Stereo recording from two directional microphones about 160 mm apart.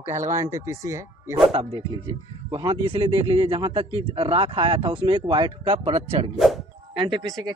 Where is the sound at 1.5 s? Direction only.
35° right (ahead or behind).